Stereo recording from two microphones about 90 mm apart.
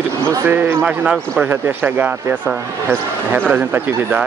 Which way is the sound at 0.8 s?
10° right (ahead or behind).